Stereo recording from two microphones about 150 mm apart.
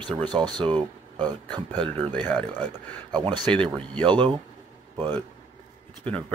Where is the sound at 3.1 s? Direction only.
30° right (ahead or behind).